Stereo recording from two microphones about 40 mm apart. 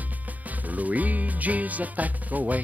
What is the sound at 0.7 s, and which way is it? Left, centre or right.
Speech, right.